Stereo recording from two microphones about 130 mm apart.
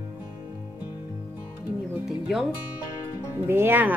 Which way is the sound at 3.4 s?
15° right (ahead or behind).